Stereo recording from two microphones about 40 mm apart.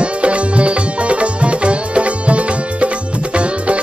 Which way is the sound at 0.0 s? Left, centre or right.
Right.